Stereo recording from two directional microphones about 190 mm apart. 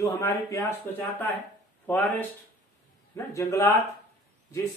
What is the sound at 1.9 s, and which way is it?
A man's voice, 10° left (ahead or behind).